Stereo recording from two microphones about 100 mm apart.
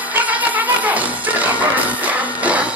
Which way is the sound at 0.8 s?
15° right (ahead or behind).